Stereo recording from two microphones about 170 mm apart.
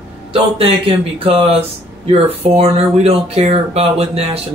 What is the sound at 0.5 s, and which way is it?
Speech, 35° right (ahead or behind).